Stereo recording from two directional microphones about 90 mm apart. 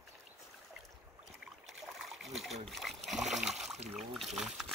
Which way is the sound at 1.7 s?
Centre (ahead or behind).